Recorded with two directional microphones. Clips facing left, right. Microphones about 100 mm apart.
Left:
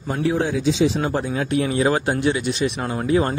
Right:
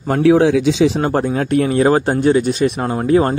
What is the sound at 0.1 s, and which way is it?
Speech, 75° right (ahead or behind).